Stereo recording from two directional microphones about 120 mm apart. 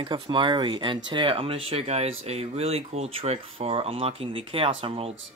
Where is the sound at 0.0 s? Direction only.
45° right (ahead or behind).